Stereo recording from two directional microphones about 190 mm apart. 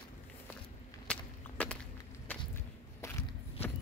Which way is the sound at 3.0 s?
15° left (ahead or behind).